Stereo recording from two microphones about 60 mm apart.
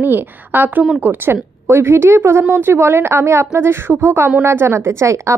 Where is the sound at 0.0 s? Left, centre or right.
Right.